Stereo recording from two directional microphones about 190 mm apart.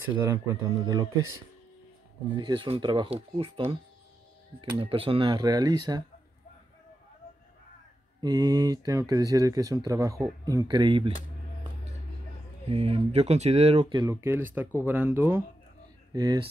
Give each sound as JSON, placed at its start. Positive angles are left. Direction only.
{"t": 0.3, "sound": "speech", "side_deg": -15}
{"t": 2.3, "sound": "speech", "side_deg": -25}
{"t": 8.2, "sound": "speech", "side_deg": -20}
{"t": 12.6, "sound": "speech", "side_deg": -30}